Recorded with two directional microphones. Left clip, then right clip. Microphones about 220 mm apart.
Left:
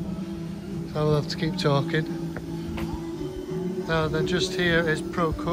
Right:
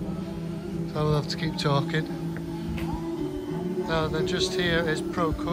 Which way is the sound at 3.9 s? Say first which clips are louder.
Left 2 dB; 5° right (ahead or behind).